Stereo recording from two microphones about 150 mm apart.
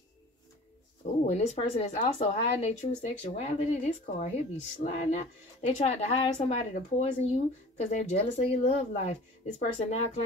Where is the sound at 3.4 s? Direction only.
45° left (ahead or behind).